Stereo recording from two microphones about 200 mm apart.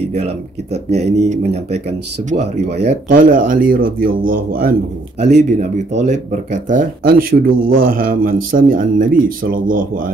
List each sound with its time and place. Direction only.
0.9 s speech: 35° right (ahead or behind)
2.8 s speech: 50° right (ahead or behind)
5.2 s speech: 35° right (ahead or behind)